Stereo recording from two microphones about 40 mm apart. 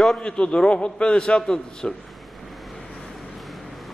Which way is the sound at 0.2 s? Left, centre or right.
Left.